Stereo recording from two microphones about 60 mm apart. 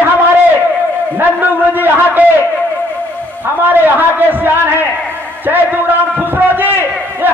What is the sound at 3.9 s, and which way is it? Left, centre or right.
A man's voice, right.